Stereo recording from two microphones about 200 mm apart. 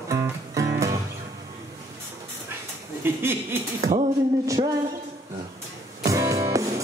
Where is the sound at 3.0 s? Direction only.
10° right (ahead or behind).